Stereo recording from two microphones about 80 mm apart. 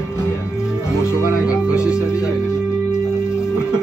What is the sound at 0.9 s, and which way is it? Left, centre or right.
Music, left.